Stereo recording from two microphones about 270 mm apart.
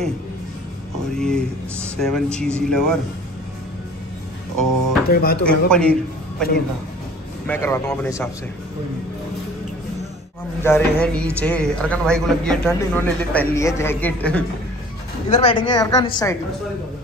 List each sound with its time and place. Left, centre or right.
1.1 s speech: centre
5.0 s speech: left
5.7 s a woman's voice: centre
10.6 s speech: centre
15.2 s a woman's voice: left